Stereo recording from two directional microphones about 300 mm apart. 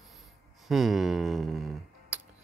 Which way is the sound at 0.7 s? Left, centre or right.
Centre.